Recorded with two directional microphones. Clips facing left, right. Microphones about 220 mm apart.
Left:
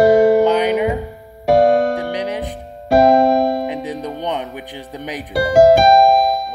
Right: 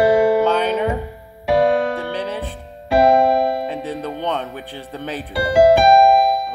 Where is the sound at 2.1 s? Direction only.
15° left (ahead or behind).